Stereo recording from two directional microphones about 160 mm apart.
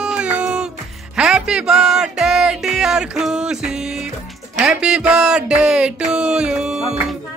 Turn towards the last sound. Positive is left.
turn(degrees=-5)  # may be behind; listen again after turning